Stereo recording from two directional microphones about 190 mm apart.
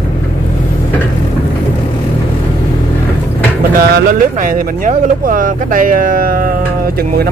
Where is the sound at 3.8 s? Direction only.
55° right (ahead or behind).